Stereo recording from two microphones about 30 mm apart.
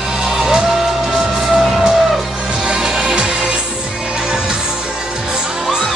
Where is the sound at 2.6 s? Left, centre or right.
Centre.